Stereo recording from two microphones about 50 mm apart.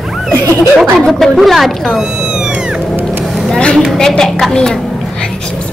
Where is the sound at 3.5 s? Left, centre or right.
Left.